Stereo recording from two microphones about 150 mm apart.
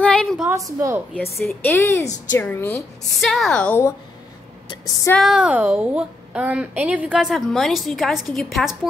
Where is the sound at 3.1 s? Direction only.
Centre (ahead or behind).